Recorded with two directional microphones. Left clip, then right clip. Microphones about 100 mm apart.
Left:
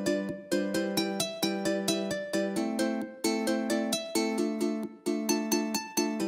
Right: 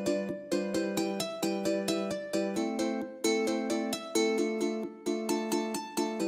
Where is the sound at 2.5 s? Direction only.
15° left (ahead or behind).